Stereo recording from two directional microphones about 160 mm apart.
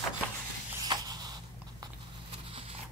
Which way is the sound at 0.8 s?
25° right (ahead or behind).